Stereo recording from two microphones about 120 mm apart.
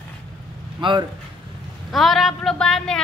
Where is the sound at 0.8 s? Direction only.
40° right (ahead or behind).